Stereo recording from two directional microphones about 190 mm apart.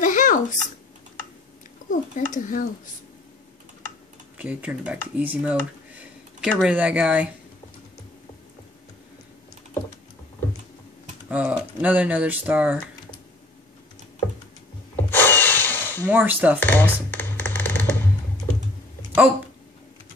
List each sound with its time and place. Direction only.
0.0 s a sound: 45° left (ahead or behind)
1.9 s a child's voice: 40° left (ahead or behind)
4.4 s speech: 5° right (ahead or behind)
11.2 s speech: 10° right (ahead or behind)
15.0 s drill: 10° left (ahead or behind)
16.1 s speech: 10° right (ahead or behind)
16.5 s a sound: 10° left (ahead or behind)